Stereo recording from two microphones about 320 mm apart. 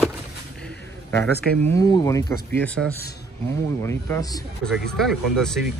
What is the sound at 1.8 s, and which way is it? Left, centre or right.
Speech, centre.